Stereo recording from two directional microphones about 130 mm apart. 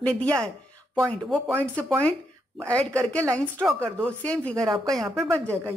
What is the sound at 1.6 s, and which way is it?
A woman's voice, 10° left (ahead or behind).